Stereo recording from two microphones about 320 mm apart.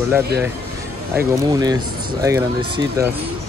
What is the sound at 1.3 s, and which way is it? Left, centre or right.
Speech, centre.